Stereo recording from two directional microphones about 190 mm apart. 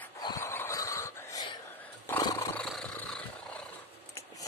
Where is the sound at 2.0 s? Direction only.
15° left (ahead or behind).